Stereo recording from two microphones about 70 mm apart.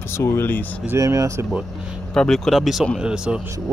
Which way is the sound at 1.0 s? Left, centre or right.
Right.